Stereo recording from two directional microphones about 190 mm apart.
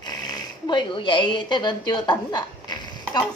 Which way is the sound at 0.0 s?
20° left (ahead or behind).